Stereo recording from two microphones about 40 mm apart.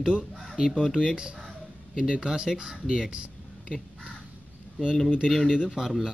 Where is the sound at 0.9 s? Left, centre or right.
Centre.